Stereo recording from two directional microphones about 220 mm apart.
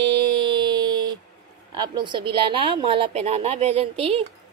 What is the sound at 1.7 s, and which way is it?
A woman's voice, 20° right (ahead or behind).